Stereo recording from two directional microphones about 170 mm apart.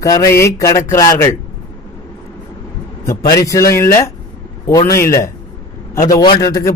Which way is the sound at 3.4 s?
20° left (ahead or behind).